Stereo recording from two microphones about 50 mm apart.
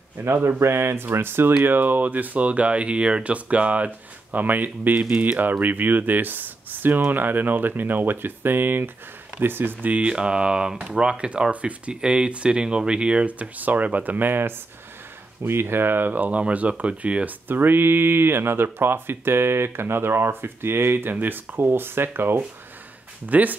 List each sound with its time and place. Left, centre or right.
0.2 s speech: right
10.0 s speech: centre
17.5 s speech: right
23.2 s speech: right